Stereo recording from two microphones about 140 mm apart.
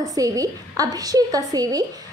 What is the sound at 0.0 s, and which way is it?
A woman's voice, 25° right (ahead or behind).